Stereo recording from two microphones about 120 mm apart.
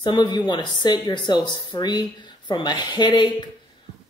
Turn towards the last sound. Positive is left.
turn(degrees=40)  # may be behind; listen again after turning